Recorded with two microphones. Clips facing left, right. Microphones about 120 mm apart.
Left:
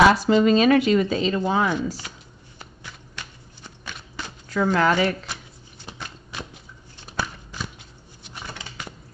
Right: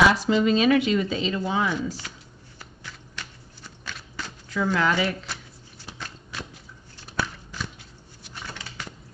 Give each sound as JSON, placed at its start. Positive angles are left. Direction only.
{"t": 0.1, "sound": "speech", "side_deg": 40}
{"t": 2.0, "sound": "speech", "side_deg": 15}
{"t": 2.6, "sound": "a sound", "side_deg": 20}
{"t": 4.5, "sound": "speech", "side_deg": 50}
{"t": 5.3, "sound": "shuffling cards", "side_deg": 20}
{"t": 7.0, "sound": "a sound", "side_deg": 20}